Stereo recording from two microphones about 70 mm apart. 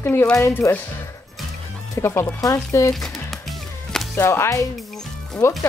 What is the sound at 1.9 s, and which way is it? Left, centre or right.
Speech, left.